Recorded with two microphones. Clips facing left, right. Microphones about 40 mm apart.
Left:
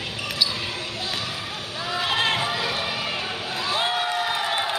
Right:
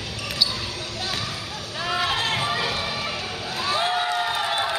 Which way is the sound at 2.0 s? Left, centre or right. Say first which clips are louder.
Left 3 dB; left.